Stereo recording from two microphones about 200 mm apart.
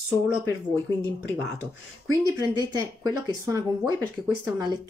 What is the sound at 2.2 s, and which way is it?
Speech, 20° right (ahead or behind).